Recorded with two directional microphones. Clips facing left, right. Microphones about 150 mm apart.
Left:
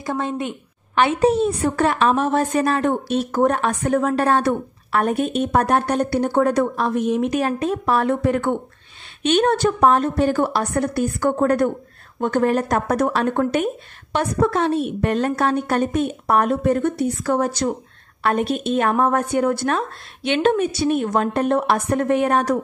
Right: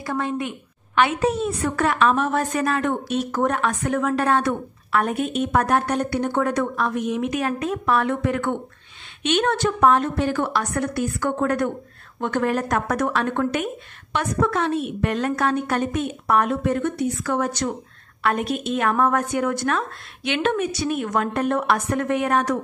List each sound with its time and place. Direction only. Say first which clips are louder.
0.0 s a woman's voice: left 1 dB; 25° left (ahead or behind)